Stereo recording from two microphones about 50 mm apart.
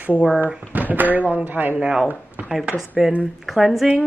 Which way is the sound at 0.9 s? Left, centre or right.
Right.